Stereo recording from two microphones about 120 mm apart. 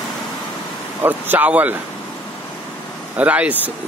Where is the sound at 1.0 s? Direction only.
15° right (ahead or behind).